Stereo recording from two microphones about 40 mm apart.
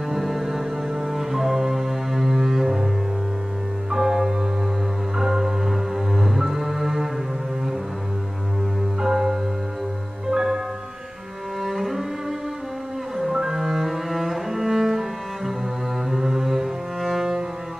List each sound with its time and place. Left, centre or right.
0.1 s music: centre
1.0 s cello: centre
3.9 s music: centre
9.0 s music: centre
11.6 s cello: centre